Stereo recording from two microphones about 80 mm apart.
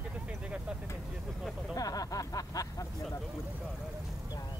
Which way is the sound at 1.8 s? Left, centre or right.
Left.